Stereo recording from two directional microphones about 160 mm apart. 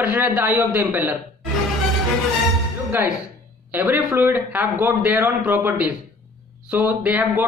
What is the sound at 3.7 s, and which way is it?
A man's voice, 10° right (ahead or behind).